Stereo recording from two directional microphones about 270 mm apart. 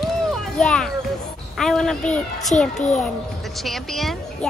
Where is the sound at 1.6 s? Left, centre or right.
Centre.